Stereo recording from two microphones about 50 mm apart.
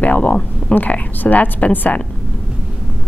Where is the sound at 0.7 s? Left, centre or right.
Left.